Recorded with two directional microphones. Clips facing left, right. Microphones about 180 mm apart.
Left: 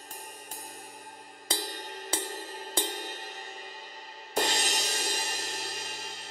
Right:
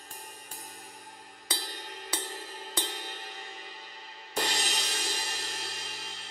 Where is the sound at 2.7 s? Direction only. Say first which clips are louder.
Left 4 dB; 45° left (ahead or behind).